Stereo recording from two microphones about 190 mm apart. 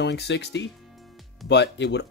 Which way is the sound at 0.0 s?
60° left (ahead or behind).